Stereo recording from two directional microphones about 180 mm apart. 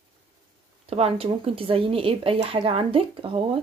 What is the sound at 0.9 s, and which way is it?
Speech, 35° right (ahead or behind).